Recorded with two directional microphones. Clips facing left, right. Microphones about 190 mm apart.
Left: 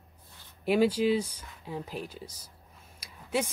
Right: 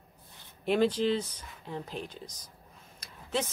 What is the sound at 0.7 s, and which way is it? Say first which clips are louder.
Speech: left 2 dB; 10° left (ahead or behind).